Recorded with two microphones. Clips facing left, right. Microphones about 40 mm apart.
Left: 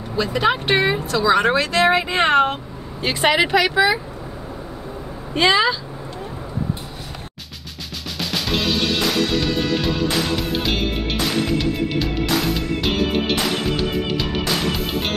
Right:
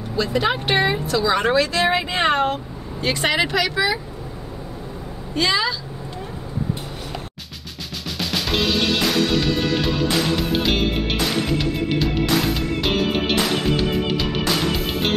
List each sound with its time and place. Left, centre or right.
0.1 s speech: centre
1.4 s speech: left
3.0 s speech: centre
5.3 s speech: left
8.2 s music: centre